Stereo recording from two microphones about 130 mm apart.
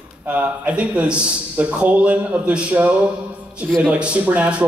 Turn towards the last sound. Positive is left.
turn(degrees=-10)  # may be behind; listen again after turning